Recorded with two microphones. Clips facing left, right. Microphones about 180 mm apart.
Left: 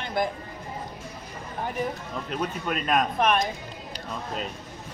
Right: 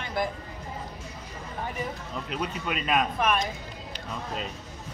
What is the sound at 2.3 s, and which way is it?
A man's voice, 45° left (ahead or behind).